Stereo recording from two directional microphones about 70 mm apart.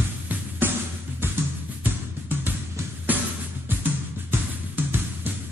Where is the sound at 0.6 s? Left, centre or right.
Right.